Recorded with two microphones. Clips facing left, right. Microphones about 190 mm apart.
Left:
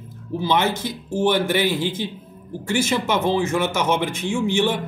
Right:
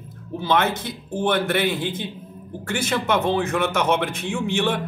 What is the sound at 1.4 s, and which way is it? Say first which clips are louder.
A man's voice: left 1 dB; 60° right (ahead or behind).